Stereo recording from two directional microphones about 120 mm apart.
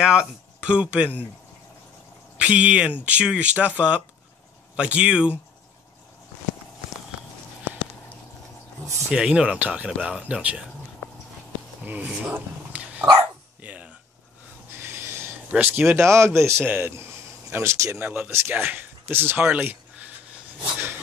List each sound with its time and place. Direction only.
0.0 s speech: 5° right (ahead or behind)
2.3 s speech: 10° right (ahead or behind)
9.1 s speech: 5° right (ahead or behind)
11.8 s speech: 15° right (ahead or behind)
13.1 s speech: 35° right (ahead or behind)
13.6 s a sound: 10° right (ahead or behind)
15.5 s speech: 15° right (ahead or behind)